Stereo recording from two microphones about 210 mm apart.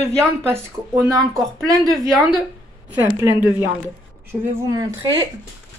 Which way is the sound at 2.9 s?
10° right (ahead or behind).